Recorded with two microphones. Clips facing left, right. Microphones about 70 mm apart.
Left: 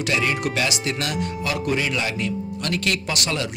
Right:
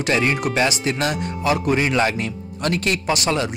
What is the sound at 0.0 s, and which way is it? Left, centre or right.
Speech, right.